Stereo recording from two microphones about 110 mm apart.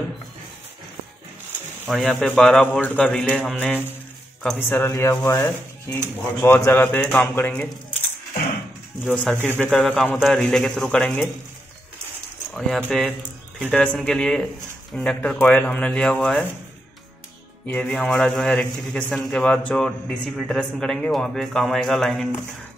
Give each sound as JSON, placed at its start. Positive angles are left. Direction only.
{"t": 1.9, "sound": "speech", "side_deg": 0}
{"t": 9.0, "sound": "speech", "side_deg": 15}
{"t": 9.7, "sound": "a man's voice", "side_deg": 0}
{"t": 12.5, "sound": "speech", "side_deg": 0}
{"t": 17.6, "sound": "a man's voice", "side_deg": 10}